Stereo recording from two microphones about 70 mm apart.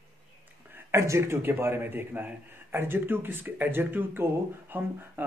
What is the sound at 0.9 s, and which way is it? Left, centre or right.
A man's voice, right.